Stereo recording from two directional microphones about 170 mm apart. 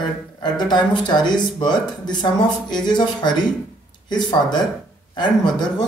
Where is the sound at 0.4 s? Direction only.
25° left (ahead or behind).